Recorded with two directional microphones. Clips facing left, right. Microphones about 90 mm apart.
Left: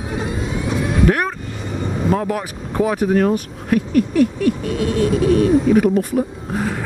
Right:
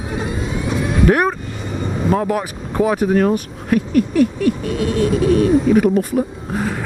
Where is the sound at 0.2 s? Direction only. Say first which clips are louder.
Even; 25° right (ahead or behind).